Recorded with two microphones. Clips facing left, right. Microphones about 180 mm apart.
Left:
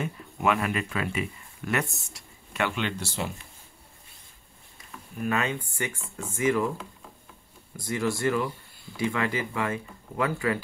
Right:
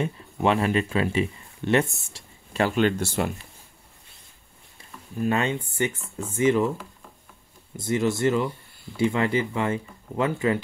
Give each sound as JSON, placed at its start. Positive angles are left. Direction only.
{"t": 0.0, "sound": "speech", "side_deg": -30}
{"t": 5.2, "sound": "speech", "side_deg": -30}
{"t": 7.7, "sound": "speech", "side_deg": -25}